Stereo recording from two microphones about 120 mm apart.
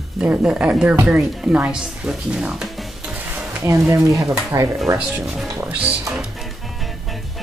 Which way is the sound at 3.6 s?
25° right (ahead or behind).